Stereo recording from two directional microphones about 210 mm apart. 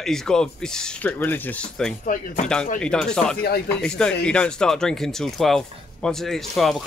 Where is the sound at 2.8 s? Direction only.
5° left (ahead or behind).